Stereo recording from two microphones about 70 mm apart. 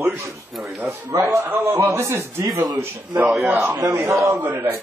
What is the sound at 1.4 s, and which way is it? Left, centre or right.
Speech, right.